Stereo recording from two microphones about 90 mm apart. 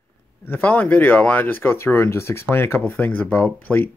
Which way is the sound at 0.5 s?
20° left (ahead or behind).